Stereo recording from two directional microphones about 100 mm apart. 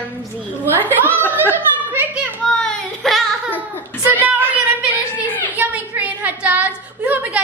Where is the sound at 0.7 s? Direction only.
20° left (ahead or behind).